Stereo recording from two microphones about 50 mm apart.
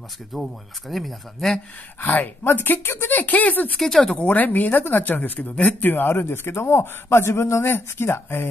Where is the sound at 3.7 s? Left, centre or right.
Centre.